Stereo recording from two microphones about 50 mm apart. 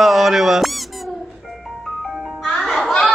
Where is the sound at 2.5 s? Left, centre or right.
Centre.